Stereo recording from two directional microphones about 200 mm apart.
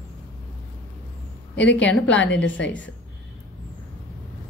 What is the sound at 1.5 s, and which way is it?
Speech, 60° left (ahead or behind).